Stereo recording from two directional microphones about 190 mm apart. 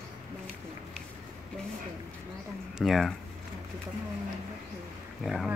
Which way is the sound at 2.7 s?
Centre (ahead or behind).